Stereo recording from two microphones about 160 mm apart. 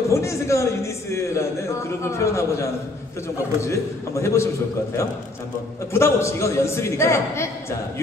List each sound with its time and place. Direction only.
0.1 s a man's voice: 15° left (ahead or behind)
5.9 s a man's voice: 15° left (ahead or behind)